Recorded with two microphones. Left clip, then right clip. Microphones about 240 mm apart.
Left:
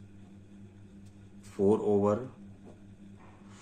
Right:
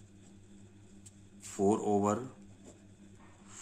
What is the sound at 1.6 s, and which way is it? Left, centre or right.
Speech, right.